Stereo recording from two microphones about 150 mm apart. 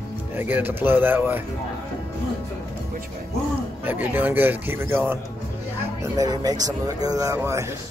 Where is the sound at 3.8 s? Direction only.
15° right (ahead or behind).